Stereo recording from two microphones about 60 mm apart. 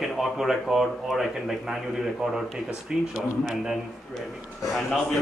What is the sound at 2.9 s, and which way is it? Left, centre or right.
Speech, centre.